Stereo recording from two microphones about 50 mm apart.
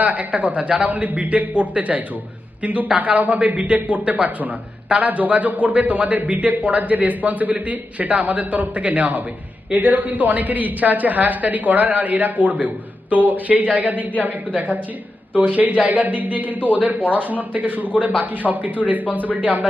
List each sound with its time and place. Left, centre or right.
0.0 s a man's voice: right